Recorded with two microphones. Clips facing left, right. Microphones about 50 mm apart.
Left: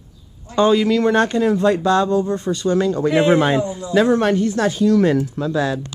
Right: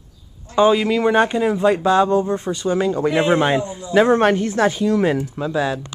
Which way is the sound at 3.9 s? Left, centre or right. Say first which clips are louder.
Right 1 dB; right.